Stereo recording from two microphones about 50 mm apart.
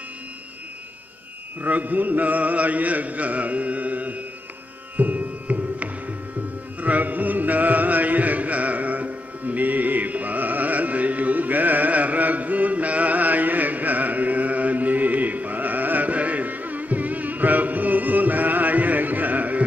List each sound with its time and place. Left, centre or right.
1.6 s mantra: right
4.9 s music: right